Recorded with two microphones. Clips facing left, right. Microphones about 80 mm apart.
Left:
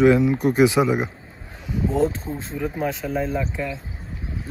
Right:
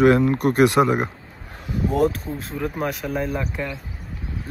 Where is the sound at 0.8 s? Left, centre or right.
Centre.